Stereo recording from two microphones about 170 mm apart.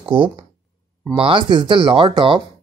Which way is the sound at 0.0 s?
30° right (ahead or behind).